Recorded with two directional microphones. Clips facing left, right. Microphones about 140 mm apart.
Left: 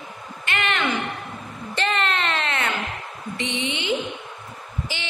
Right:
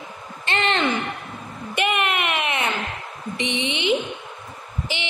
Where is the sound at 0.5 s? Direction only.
30° right (ahead or behind).